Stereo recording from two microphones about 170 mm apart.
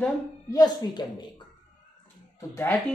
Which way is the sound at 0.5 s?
25° left (ahead or behind).